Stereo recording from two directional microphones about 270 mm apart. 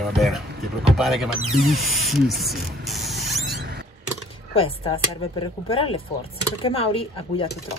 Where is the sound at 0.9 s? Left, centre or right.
Centre.